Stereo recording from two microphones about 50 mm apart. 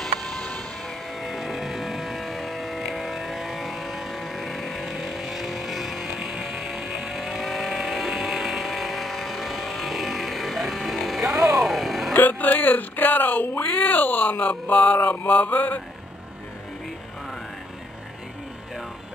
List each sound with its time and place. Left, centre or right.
0.0 s music: centre
1.2 s a sound: centre
6.5 s music: centre
6.8 s vehicle: centre
11.5 s a sound: centre
12.1 s speech: left
14.4 s mantra: left